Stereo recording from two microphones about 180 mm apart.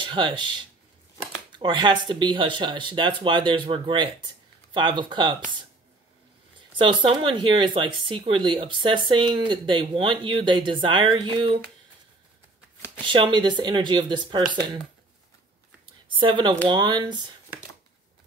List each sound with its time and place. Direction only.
0.0 s speech: 25° right (ahead or behind)
6.8 s speech: 25° right (ahead or behind)
13.0 s speech: 25° right (ahead or behind)
16.1 s speech: 30° right (ahead or behind)